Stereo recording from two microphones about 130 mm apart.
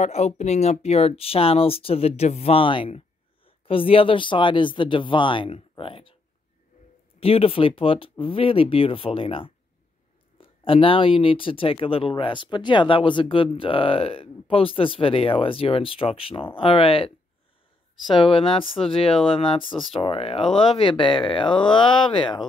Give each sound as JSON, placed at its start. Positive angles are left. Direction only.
{"t": 0.0, "sound": "speech", "side_deg": 60}
{"t": 7.2, "sound": "speech", "side_deg": 45}
{"t": 18.1, "sound": "speech", "side_deg": 40}